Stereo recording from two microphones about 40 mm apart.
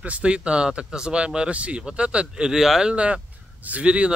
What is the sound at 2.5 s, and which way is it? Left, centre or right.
Speech, centre.